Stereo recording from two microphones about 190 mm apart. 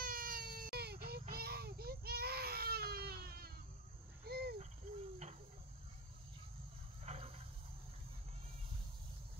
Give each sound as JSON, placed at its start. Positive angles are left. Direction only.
{"t": 0.0, "sound": "baby cry", "side_deg": -50}
{"t": 4.3, "sound": "cricket", "side_deg": -55}
{"t": 7.1, "sound": "a sound", "side_deg": -30}